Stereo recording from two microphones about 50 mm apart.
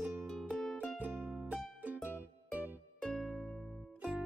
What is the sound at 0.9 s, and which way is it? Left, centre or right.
Music, right.